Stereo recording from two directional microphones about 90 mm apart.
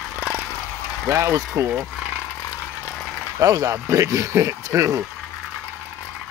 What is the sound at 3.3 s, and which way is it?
Speech, 40° right (ahead or behind).